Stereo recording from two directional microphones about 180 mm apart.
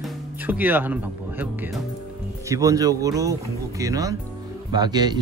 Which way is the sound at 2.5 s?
20° right (ahead or behind).